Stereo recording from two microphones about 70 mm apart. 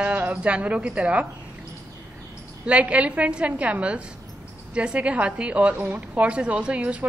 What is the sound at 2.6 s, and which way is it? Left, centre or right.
A woman's voice, centre.